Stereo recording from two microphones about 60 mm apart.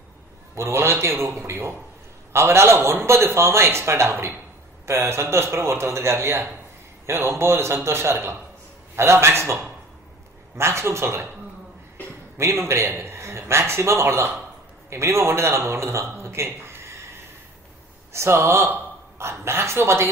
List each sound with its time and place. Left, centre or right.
0.6 s a man's voice: right
12.4 s a man's voice: right
18.1 s a man's voice: right